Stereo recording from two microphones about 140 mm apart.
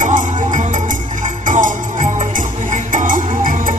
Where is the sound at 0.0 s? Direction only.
60° right (ahead or behind).